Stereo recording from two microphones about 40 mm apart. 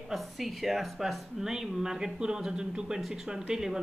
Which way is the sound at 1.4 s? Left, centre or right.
Centre.